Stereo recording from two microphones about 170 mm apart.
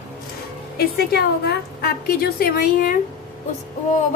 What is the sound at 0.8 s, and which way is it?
A woman's voice, 65° left (ahead or behind).